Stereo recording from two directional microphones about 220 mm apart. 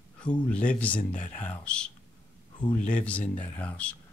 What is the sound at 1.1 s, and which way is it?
Speech, 35° left (ahead or behind).